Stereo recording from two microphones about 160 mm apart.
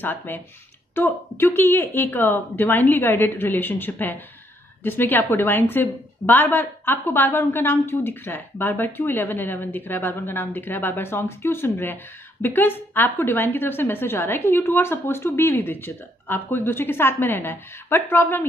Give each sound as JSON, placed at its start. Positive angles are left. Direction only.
{"t": 0.0, "sound": "a woman's voice", "side_deg": 10}